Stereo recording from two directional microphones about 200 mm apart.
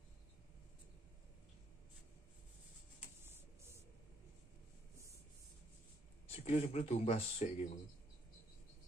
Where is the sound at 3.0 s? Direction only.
10° right (ahead or behind).